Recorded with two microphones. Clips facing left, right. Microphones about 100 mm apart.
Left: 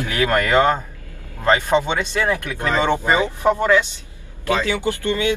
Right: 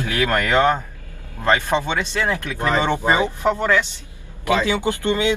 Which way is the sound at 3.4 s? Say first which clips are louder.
Left 4 dB; 15° left (ahead or behind).